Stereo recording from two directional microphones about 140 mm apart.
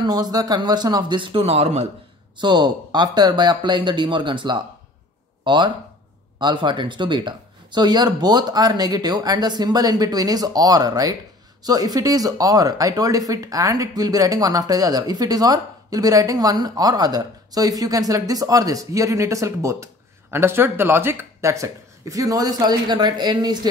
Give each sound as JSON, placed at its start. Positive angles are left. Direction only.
{"t": 0.0, "sound": "speech", "side_deg": -30}
{"t": 2.3, "sound": "speech", "side_deg": -30}